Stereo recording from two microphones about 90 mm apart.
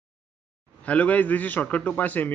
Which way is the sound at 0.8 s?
15° left (ahead or behind).